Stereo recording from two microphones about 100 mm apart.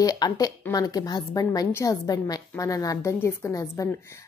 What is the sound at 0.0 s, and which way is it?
A woman's voice, 40° left (ahead or behind).